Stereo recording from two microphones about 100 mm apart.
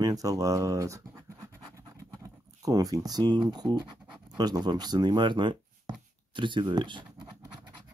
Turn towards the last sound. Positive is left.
turn(degrees=-50)  # may be behind; listen again after turning